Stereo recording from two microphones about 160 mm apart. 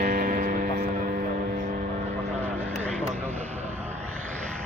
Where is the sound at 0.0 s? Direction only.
60° right (ahead or behind).